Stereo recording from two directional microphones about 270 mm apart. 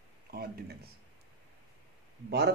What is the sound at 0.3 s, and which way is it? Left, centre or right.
Speech, right.